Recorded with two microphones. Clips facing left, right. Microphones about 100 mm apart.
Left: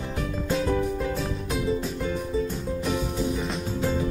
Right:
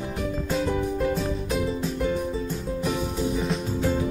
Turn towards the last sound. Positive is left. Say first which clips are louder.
# right 1 dB
turn(degrees=0)  # may be behind; listen again after turning